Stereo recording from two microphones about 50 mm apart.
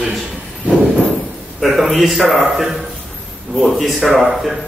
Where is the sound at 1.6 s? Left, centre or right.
Centre.